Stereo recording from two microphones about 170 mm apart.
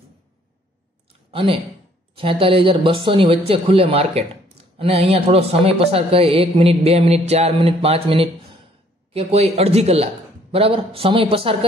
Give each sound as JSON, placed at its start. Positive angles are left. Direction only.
{"t": 1.3, "sound": "speech", "side_deg": -30}